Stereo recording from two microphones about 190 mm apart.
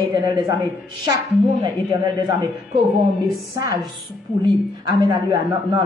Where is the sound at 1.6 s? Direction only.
20° right (ahead or behind).